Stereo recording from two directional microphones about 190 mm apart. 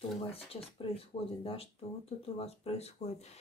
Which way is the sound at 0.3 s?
30° left (ahead or behind).